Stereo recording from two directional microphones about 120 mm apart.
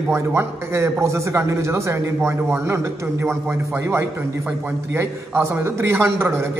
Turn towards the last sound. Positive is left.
turn(degrees=-20)  # may be behind; listen again after turning